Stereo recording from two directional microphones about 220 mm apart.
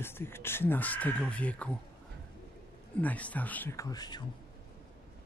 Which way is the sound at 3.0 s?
5° left (ahead or behind).